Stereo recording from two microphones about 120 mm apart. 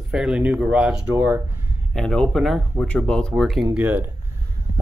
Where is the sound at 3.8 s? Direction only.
15° right (ahead or behind).